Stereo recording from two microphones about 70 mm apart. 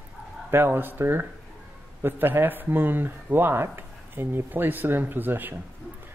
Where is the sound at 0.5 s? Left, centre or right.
Right.